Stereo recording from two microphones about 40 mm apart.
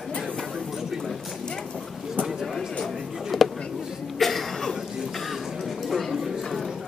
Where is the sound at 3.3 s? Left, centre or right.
Centre.